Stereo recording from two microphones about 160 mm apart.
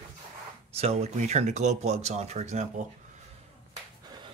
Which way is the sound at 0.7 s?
40° right (ahead or behind).